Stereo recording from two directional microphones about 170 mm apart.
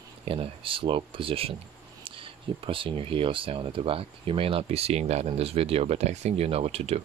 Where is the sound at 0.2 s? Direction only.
35° right (ahead or behind).